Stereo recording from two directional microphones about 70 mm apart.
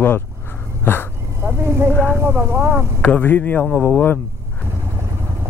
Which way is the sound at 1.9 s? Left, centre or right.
Left.